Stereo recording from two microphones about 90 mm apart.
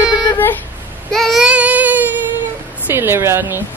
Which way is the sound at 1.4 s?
15° right (ahead or behind).